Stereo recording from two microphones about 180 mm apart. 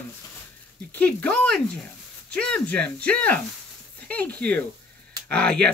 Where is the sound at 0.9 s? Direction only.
10° left (ahead or behind).